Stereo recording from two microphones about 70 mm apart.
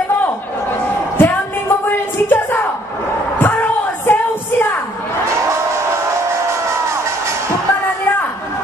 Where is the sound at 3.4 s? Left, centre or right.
Left.